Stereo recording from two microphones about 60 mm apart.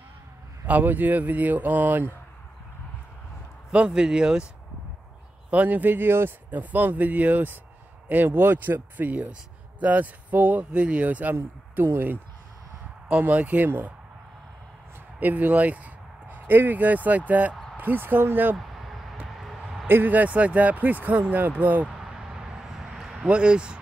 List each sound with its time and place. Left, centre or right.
0.7 s speech: right
3.7 s speech: centre
5.5 s speech: right
11.7 s speech: right
13.1 s speech: right
15.1 s speech: right
18.6 s a sound: centre
19.9 s speech: right
21.9 s vehicle: centre
23.2 s speech: centre